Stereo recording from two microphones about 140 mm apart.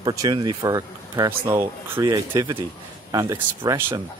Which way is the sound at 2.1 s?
30° right (ahead or behind).